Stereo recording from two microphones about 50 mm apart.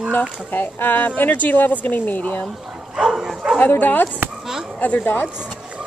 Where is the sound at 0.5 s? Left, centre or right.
Left.